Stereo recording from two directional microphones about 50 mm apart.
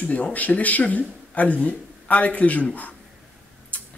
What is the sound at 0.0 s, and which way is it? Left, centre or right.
Speech, left.